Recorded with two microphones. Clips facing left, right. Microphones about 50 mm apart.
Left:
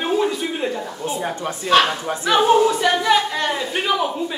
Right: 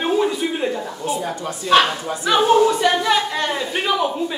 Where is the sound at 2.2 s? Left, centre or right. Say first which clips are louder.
Even; centre.